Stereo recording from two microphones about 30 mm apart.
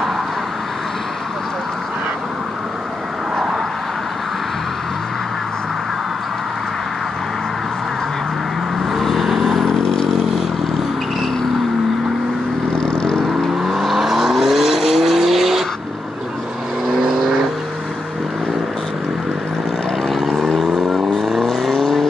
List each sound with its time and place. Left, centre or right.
8.9 s vehicle: centre
13.8 s vehicle: centre
16.9 s vehicle: centre
20.2 s vehicle: centre